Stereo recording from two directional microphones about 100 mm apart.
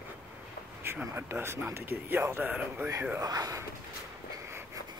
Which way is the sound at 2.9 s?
25° right (ahead or behind).